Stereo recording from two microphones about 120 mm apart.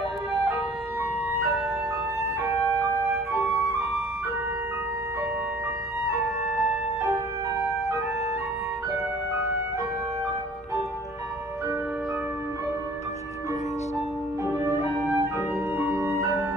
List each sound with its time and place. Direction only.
6.0 s music: 25° right (ahead or behind)
14.4 s music: 20° right (ahead or behind)